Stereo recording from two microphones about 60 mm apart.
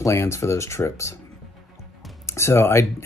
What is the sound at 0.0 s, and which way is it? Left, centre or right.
Speech, left.